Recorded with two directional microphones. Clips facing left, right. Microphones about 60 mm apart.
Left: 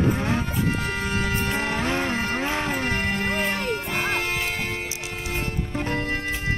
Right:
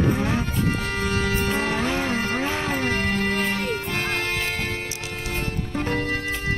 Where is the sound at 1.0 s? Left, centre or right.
Centre.